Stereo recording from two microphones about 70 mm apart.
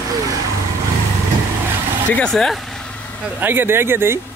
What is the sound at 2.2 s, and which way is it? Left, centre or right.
Speech, centre.